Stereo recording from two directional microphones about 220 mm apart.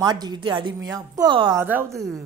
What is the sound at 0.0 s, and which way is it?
A woman's voice, 20° right (ahead or behind).